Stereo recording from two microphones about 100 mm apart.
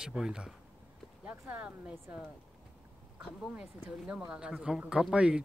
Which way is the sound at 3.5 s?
10° right (ahead or behind).